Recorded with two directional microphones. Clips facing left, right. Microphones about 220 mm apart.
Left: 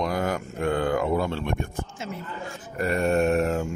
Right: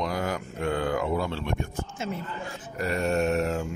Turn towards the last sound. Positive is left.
turn(degrees=50)  # may be behind; listen again after turning